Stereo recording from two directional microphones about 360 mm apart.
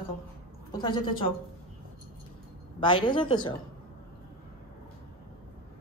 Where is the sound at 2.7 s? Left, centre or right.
Centre.